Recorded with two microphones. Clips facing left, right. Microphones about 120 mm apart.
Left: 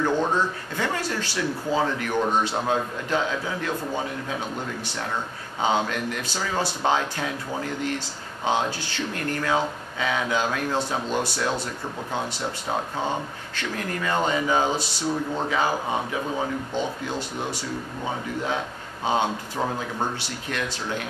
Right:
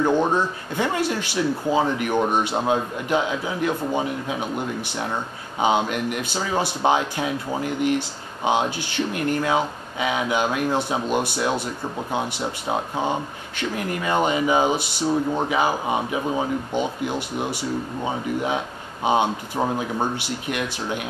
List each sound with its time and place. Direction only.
0.0 s speech: 15° right (ahead or behind)